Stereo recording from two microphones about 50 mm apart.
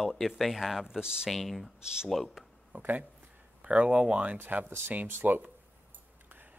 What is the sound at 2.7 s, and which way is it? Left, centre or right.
Speech, right.